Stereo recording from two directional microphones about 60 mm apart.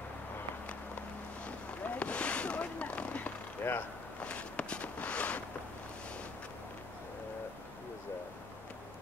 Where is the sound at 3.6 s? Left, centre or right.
Left.